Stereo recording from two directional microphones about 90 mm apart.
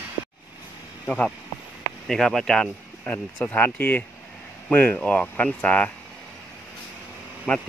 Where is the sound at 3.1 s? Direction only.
20° left (ahead or behind).